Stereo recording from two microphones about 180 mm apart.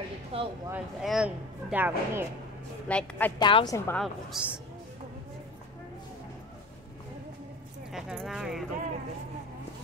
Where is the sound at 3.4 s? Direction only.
25° left (ahead or behind).